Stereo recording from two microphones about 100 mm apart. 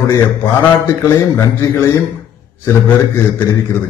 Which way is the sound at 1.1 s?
35° left (ahead or behind).